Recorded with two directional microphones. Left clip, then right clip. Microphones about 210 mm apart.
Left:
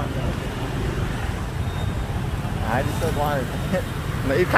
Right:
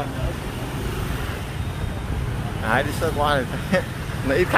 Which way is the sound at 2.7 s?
20° right (ahead or behind).